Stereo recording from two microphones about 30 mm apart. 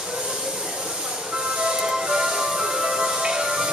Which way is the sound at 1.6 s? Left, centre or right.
Right.